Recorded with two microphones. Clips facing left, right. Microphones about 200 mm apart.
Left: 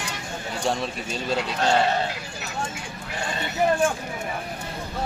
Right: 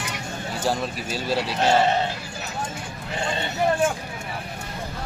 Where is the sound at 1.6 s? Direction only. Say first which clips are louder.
Right 2 dB; 20° right (ahead or behind).